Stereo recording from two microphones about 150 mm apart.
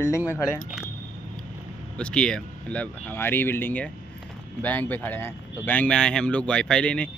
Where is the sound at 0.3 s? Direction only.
20° left (ahead or behind).